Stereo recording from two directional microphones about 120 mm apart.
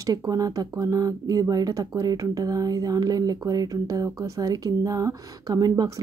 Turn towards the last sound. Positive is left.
turn(degrees=-30)  # may be behind; listen again after turning